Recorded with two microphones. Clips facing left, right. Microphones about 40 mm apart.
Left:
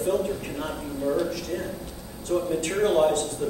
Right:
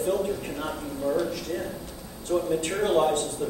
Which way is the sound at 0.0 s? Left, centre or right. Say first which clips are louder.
Left 1 dB; centre.